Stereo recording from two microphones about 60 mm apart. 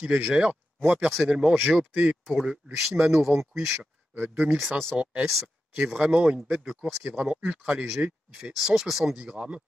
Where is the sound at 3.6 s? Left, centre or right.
Right.